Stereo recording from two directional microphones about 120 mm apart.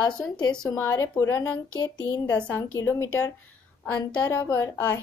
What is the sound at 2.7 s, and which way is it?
A woman's voice, 25° left (ahead or behind).